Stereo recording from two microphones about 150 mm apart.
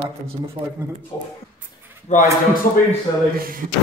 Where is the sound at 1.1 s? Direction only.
15° left (ahead or behind).